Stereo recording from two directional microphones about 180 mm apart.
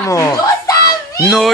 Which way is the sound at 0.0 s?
20° left (ahead or behind).